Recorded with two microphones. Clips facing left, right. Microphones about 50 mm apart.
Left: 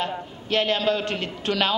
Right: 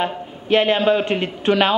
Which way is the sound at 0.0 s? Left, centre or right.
Right.